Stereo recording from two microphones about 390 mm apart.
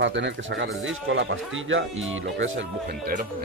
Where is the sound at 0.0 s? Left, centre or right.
Right.